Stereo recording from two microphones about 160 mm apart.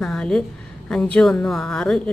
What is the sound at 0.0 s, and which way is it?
Speech, 5° left (ahead or behind).